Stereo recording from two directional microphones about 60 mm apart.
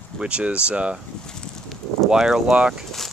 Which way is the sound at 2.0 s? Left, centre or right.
Centre.